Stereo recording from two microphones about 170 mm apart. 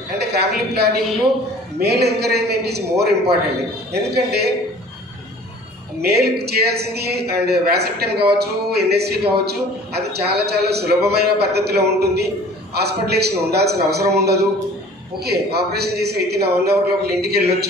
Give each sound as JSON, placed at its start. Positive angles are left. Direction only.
{"t": 0.2, "sound": "a woman's voice", "side_deg": -70}
{"t": 5.9, "sound": "a woman's voice", "side_deg": -70}